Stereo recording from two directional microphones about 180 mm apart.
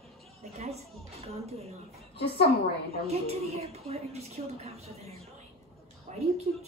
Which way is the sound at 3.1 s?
35° right (ahead or behind).